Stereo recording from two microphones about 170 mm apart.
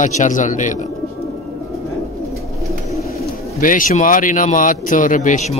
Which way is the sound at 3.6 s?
50° left (ahead or behind).